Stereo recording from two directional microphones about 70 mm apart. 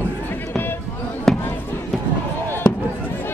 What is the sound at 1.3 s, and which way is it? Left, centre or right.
Basketball bounce, centre.